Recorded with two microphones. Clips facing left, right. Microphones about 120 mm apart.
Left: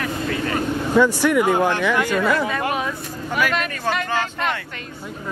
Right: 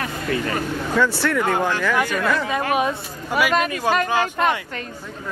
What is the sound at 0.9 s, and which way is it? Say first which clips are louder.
Speech: left 4 dB; 15° left (ahead or behind).